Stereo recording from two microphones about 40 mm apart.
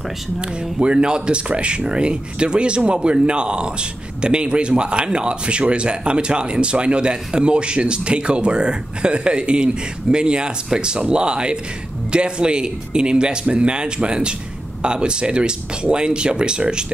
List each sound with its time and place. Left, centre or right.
0.4 s speech: right